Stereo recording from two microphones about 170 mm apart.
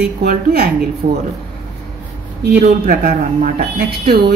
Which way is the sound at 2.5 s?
60° right (ahead or behind).